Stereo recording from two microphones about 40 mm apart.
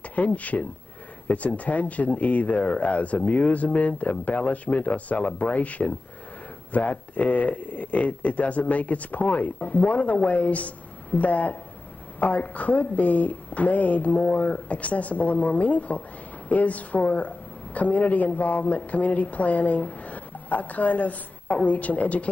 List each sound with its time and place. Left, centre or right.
0.1 s speech: left